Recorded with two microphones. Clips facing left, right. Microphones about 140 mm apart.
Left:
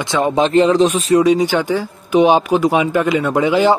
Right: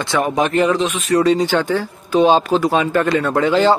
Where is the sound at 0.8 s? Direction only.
35° left (ahead or behind).